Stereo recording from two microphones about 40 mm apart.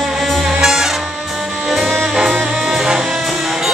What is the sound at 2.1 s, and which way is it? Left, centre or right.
Music, centre.